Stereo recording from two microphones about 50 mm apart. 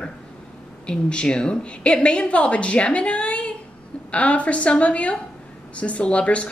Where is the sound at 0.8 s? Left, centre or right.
Left.